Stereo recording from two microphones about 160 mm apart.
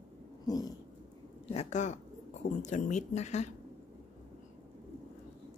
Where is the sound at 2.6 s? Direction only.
45° left (ahead or behind).